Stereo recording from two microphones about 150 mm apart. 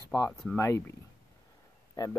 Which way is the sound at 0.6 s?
20° left (ahead or behind).